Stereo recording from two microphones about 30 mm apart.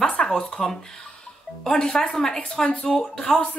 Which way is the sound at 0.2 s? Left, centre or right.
Left.